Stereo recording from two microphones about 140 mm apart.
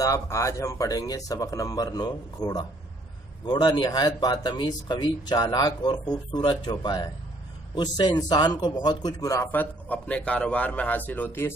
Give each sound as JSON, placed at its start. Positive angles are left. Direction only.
{"t": 0.0, "sound": "a man's voice", "side_deg": 25}